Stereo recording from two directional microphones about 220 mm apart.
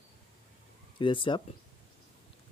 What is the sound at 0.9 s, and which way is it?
Speech, 25° left (ahead or behind).